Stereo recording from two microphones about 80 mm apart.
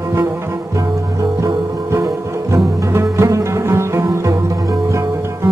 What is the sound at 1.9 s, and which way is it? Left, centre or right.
Music, right.